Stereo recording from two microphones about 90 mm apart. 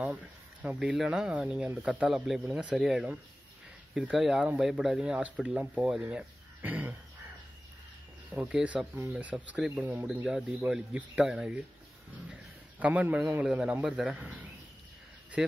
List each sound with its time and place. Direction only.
0.0 s speech: 15° right (ahead or behind)
0.7 s speech: 5° right (ahead or behind)
2.0 s speech: 5° right (ahead or behind)
8.3 s speech: 15° right (ahead or behind)
10.0 s speech: 5° right (ahead or behind)
12.3 s a sound: 15° right (ahead or behind)
13.4 s speech: 15° right (ahead or behind)
14.1 s speech: 15° right (ahead or behind)
15.4 s speech: 5° right (ahead or behind)